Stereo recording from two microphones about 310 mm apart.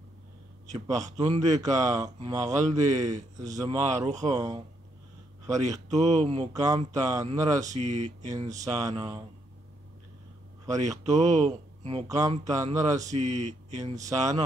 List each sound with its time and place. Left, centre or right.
0.7 s speech: centre
3.0 s a man's voice: right
5.6 s speech: right
7.5 s a man's voice: right
11.1 s speech: right
13.0 s a man's voice: right
14.0 s speech: centre